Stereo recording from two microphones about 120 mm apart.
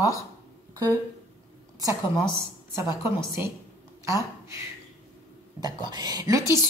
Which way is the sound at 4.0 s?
25° right (ahead or behind).